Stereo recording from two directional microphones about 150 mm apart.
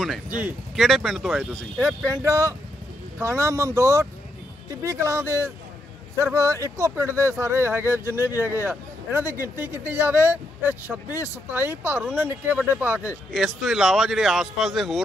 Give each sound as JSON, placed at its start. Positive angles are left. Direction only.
{"t": 0.3, "sound": "speech", "side_deg": -10}
{"t": 0.7, "sound": "speech", "side_deg": 0}
{"t": 1.8, "sound": "speech", "side_deg": -20}
{"t": 13.6, "sound": "speech", "side_deg": 0}